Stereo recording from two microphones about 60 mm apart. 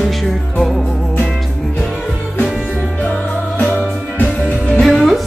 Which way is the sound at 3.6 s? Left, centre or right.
Left.